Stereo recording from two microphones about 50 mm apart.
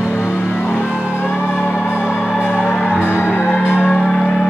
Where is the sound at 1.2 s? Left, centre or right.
Left.